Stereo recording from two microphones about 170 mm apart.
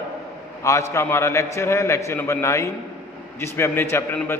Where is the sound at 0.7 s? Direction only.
15° left (ahead or behind).